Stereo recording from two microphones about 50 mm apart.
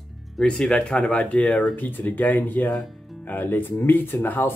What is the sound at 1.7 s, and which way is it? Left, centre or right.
Speech, left.